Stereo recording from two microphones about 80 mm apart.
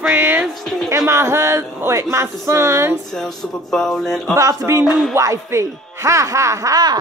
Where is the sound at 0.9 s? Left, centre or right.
Right.